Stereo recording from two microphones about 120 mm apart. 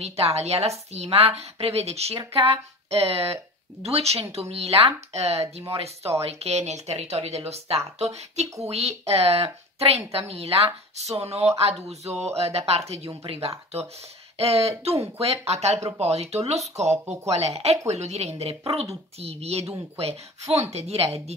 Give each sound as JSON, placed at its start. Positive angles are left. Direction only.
{"t": 0.0, "sound": "a woman's voice", "side_deg": -60}
{"t": 13.2, "sound": "a woman's voice", "side_deg": -50}
{"t": 16.9, "sound": "speech", "side_deg": -25}
{"t": 17.3, "sound": "a woman's voice", "side_deg": -60}